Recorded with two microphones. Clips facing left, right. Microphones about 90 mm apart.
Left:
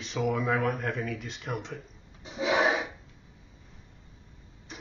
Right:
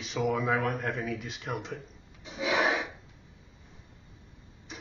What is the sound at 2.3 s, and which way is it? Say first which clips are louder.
Rub: left 2 dB; 30° left (ahead or behind).